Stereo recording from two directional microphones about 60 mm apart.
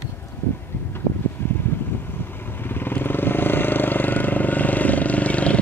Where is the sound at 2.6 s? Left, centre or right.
Left.